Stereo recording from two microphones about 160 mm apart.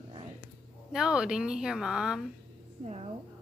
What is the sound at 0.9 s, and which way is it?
Speech, 5° right (ahead or behind).